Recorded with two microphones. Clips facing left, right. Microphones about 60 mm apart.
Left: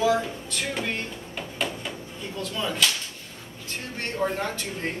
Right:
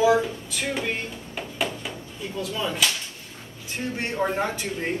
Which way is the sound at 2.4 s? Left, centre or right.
Centre.